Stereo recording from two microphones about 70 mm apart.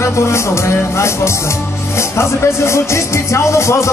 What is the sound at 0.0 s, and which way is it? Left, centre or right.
Speech, left.